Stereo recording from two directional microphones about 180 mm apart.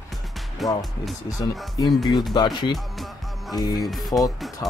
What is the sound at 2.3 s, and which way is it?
Speech, 25° left (ahead or behind).